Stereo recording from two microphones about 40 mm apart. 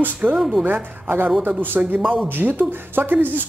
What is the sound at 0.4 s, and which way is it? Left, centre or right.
Speech, centre.